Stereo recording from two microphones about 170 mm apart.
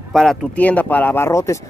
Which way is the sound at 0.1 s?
Centre (ahead or behind).